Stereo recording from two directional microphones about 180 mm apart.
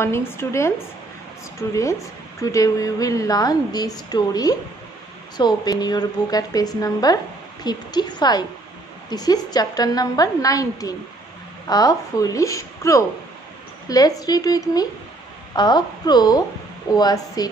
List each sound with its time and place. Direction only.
0.0 s a woman's voice: 15° left (ahead or behind)